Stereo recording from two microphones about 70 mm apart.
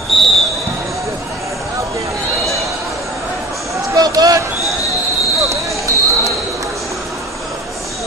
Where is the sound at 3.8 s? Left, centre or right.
Right.